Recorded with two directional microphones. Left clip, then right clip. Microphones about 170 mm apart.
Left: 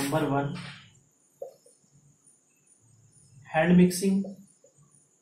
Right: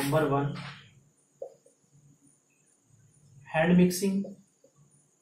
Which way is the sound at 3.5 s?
15° left (ahead or behind).